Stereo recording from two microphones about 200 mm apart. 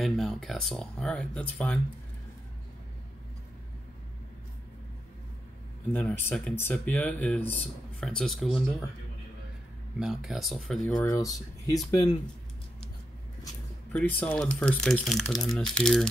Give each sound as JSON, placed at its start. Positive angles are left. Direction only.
{"t": 0.0, "sound": "speech", "side_deg": 0}
{"t": 5.9, "sound": "speech", "side_deg": 10}
{"t": 9.9, "sound": "speech", "side_deg": -5}
{"t": 11.1, "sound": "speech", "side_deg": 15}
{"t": 13.9, "sound": "speech", "side_deg": 5}